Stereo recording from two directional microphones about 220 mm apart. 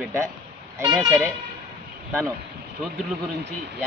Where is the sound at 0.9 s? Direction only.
10° right (ahead or behind).